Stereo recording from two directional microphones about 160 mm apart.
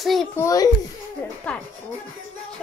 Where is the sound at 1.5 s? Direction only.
10° left (ahead or behind).